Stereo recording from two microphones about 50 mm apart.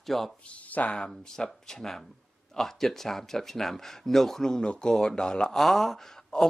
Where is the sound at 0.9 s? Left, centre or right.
Centre.